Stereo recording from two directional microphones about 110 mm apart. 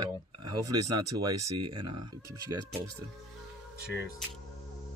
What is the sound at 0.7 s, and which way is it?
Speech, 35° right (ahead or behind).